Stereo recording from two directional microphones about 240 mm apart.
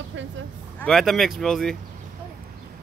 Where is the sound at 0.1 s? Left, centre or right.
Right.